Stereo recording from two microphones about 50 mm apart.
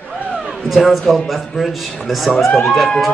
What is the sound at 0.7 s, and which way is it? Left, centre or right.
Music, centre.